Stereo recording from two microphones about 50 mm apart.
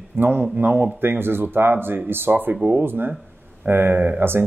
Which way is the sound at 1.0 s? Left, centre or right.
Right.